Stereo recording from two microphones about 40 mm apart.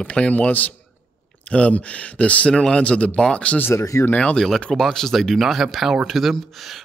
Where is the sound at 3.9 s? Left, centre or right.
Left.